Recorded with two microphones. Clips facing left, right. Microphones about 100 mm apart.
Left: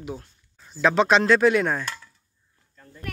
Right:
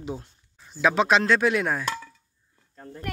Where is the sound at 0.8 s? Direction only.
5° right (ahead or behind).